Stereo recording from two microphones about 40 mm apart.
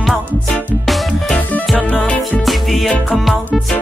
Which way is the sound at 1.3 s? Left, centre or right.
Left.